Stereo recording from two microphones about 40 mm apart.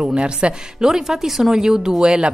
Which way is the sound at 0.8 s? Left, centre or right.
Centre.